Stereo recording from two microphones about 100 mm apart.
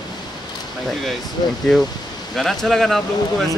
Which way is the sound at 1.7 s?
5° left (ahead or behind).